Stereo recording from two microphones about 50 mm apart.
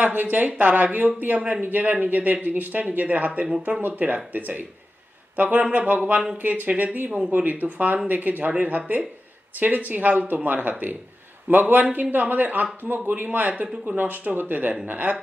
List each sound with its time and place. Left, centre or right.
0.0 s speech: right